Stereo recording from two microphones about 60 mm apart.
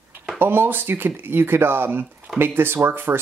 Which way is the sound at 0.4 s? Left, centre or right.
Right.